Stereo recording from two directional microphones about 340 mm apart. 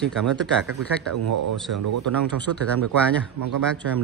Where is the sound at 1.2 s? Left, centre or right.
Right.